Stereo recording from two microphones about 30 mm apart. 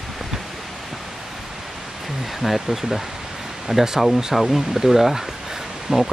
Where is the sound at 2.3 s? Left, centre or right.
Centre.